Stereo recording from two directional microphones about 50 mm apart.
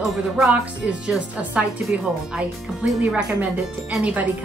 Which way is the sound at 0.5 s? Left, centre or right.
Right.